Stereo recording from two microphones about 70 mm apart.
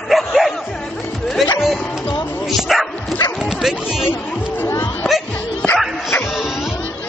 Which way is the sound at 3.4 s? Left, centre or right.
Centre.